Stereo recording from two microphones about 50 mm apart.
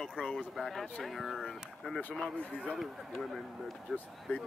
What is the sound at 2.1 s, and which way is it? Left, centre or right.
Speech, centre.